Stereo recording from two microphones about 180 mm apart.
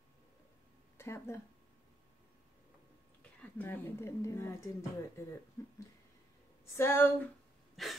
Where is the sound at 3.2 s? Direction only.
10° left (ahead or behind).